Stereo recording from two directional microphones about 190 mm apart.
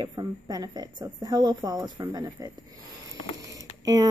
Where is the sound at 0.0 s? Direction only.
20° right (ahead or behind).